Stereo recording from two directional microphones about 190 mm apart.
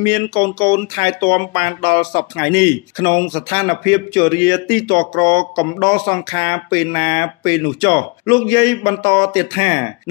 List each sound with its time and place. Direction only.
0.0 s speech: 25° left (ahead or behind)